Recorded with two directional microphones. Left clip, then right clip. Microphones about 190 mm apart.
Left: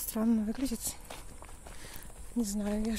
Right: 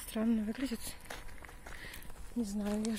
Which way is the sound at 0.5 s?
15° left (ahead or behind).